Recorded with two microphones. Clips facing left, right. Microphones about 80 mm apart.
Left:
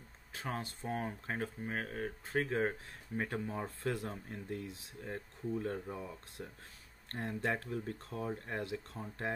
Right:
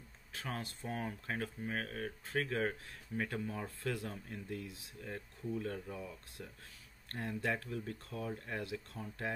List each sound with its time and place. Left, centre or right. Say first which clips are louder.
0.3 s speech: left 2 dB; left